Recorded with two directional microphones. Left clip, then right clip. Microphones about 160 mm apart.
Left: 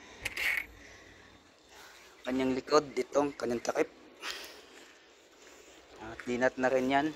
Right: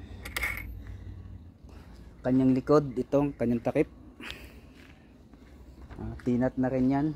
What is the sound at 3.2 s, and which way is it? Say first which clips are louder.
A man's voice: right 1 dB; 5° right (ahead or behind).